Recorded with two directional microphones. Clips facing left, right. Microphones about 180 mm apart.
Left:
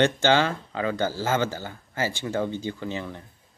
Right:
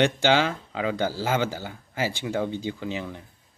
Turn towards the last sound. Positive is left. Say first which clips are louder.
# even
turn(degrees=-10)  # may be behind; listen again after turning